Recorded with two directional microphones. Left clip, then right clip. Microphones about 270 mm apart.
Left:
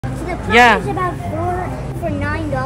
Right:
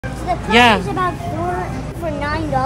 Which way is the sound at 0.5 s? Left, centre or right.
Centre.